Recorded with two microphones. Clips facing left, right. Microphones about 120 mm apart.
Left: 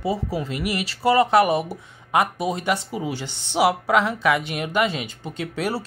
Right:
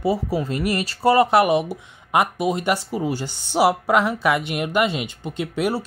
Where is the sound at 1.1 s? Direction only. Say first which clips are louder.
Even; 20° right (ahead or behind).